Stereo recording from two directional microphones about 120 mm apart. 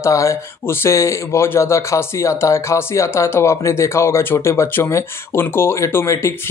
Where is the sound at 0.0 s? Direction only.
25° left (ahead or behind).